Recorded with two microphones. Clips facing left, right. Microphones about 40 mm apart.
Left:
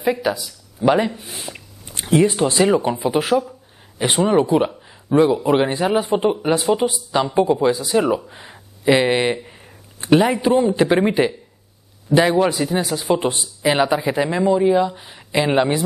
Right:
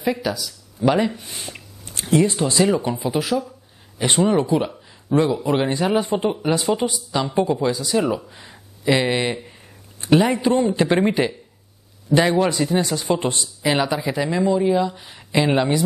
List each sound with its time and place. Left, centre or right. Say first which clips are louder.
0.0 s speech: left 3 dB; centre
2.0 s speech: left 2 dB; left
3.1 s speech: left 4 dB; left
4.0 s speech: left 2 dB; centre